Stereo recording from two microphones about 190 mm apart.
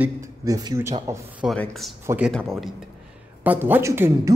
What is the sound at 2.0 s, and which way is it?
Speech, 10° right (ahead or behind).